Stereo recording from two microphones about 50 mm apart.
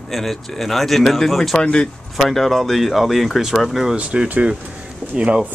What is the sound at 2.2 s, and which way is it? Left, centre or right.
Speech, centre.